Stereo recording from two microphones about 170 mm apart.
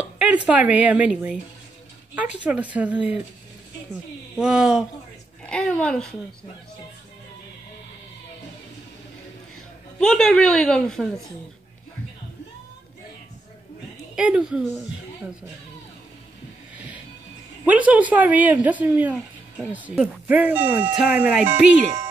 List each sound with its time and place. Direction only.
0.2 s a woman's voice: 5° right (ahead or behind)
9.9 s a woman's voice: 5° left (ahead or behind)
14.1 s a woman's voice: 5° right (ahead or behind)
17.6 s a woman's voice: 10° right (ahead or behind)